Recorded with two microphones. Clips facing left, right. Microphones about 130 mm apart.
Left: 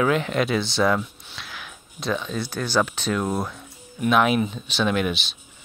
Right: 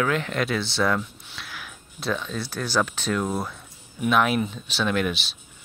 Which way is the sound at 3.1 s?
5° left (ahead or behind).